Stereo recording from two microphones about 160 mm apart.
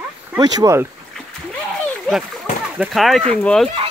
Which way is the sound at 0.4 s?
25° right (ahead or behind).